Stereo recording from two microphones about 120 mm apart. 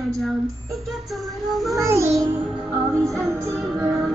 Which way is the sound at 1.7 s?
25° right (ahead or behind).